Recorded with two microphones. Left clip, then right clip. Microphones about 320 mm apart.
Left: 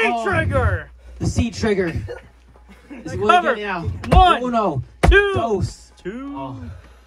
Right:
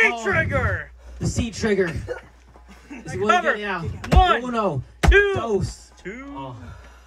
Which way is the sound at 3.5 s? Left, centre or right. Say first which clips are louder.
Left 2 dB; left.